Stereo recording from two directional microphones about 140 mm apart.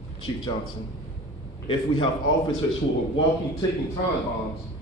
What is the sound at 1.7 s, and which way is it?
Speech, 40° left (ahead or behind).